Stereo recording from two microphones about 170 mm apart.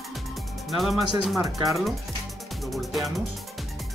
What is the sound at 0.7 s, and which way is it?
Speech, centre (ahead or behind).